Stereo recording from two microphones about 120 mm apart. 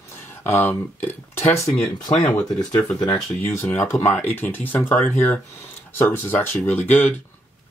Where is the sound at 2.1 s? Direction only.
40° left (ahead or behind).